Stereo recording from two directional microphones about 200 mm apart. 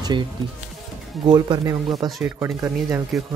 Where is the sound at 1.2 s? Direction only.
20° right (ahead or behind).